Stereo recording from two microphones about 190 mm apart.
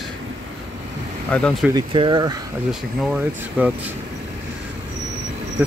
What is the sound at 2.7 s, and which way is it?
Speech, 5° right (ahead or behind).